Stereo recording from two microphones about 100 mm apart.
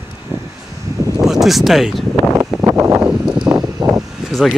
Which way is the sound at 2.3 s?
30° right (ahead or behind).